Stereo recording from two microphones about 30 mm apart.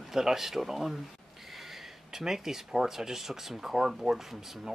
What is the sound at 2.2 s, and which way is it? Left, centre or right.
Speech, centre.